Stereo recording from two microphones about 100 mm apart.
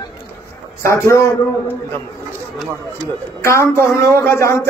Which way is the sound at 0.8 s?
30° left (ahead or behind).